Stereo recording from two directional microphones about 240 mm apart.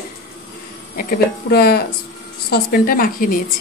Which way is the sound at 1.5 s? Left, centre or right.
Left.